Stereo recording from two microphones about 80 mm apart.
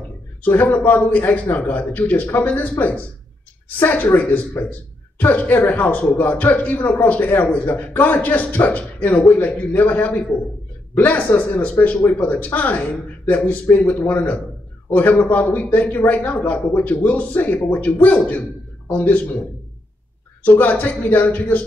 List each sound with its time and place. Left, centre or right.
0.4 s speech: left
20.4 s speech: left